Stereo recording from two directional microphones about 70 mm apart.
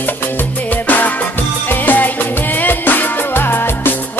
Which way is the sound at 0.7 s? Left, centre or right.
Left.